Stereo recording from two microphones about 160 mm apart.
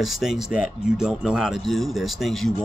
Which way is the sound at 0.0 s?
Centre (ahead or behind).